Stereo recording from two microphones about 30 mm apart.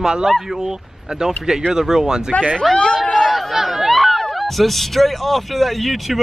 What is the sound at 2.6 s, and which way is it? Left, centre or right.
Speech, centre.